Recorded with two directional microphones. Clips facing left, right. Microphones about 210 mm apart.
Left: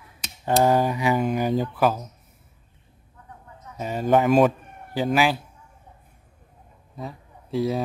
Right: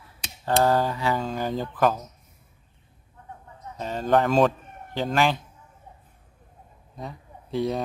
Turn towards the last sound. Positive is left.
turn(degrees=0)  # may be behind; listen again after turning